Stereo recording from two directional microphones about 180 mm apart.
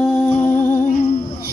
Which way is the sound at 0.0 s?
5° left (ahead or behind).